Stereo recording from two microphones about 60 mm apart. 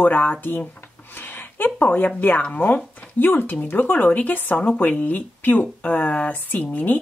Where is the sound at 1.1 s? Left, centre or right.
Left.